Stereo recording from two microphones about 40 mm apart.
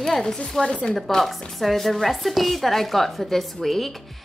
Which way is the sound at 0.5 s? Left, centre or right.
Centre.